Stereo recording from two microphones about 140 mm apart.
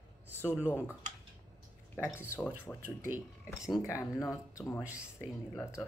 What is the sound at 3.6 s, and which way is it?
Speech, 20° left (ahead or behind).